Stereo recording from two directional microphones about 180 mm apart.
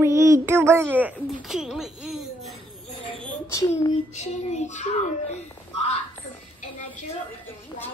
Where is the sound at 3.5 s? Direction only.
20° left (ahead or behind).